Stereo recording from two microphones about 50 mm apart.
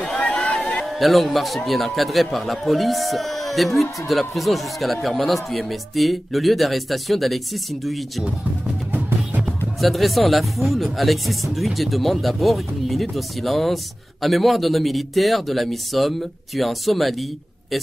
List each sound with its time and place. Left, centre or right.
0.2 s a sound: left
0.8 s a man's voice: centre
9.8 s speech: centre